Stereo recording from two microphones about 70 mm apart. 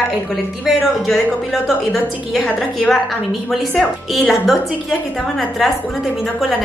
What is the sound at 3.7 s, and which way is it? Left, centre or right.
Speech, centre.